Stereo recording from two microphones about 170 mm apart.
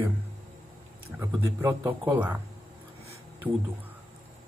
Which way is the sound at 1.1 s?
15° right (ahead or behind).